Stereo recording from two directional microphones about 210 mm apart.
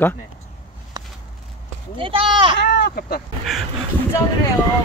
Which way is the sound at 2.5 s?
50° left (ahead or behind).